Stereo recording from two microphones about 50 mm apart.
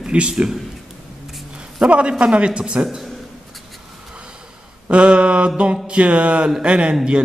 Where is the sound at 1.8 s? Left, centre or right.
Right.